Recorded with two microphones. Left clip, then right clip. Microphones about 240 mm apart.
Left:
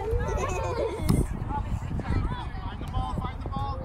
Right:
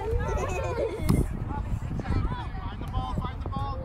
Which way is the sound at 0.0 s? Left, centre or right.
Left.